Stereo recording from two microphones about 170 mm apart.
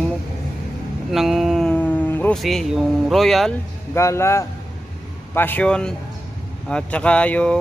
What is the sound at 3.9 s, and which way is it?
A man's voice, 15° left (ahead or behind).